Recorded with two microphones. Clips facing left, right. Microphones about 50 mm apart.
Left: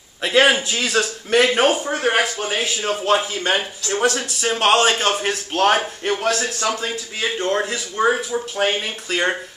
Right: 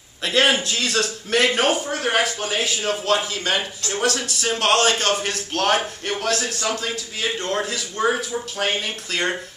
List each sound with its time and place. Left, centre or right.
0.2 s a man's voice: centre
1.9 s a man's voice: left